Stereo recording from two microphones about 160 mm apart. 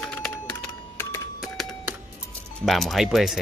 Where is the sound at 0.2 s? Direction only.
10° left (ahead or behind).